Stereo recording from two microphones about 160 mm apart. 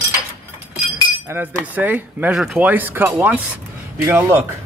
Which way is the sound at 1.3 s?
15° right (ahead or behind).